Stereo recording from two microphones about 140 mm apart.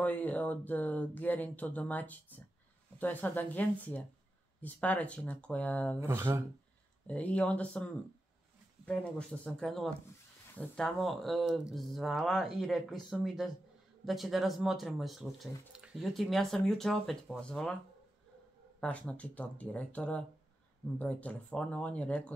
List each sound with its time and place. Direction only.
0.0 s speech: 10° left (ahead or behind)
5.9 s speech: 20° right (ahead or behind)
7.1 s speech: 10° left (ahead or behind)
18.8 s speech: 10° left (ahead or behind)